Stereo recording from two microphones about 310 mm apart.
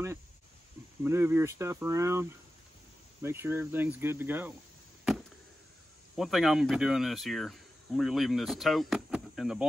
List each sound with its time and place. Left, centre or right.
1.0 s speech: centre
6.1 s speech: centre